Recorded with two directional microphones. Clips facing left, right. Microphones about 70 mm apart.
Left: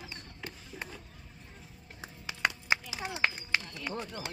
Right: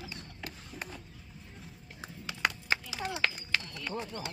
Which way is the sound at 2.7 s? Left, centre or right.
Centre.